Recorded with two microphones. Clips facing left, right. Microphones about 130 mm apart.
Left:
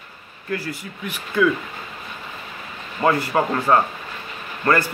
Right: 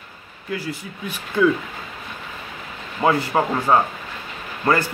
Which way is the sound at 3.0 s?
10° right (ahead or behind).